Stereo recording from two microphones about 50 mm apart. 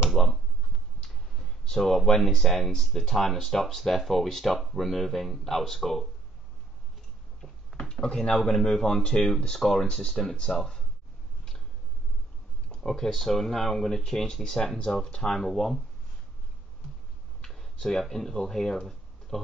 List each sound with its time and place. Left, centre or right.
0.2 s speech: centre
1.0 s clicking: centre
2.0 s speech: centre
7.8 s speech: centre
9.8 s speech: centre
12.6 s speech: centre
15.3 s speech: centre
17.4 s tick-tock: centre
17.7 s speech: centre